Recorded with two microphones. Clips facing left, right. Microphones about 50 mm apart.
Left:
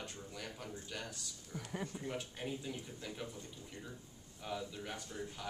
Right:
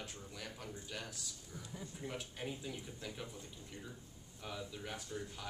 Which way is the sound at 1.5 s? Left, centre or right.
Left.